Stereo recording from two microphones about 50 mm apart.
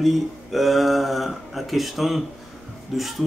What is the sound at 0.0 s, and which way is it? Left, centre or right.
Speech, centre.